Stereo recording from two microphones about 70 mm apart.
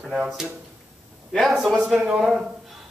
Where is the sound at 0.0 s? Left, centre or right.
Centre.